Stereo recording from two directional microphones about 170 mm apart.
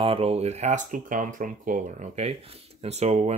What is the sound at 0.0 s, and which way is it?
Speech, 35° right (ahead or behind).